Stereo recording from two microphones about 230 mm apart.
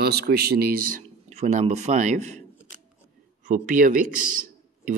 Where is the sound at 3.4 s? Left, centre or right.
Right.